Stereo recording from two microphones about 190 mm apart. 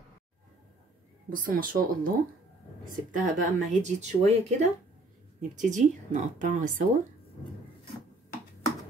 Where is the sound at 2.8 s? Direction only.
45° right (ahead or behind).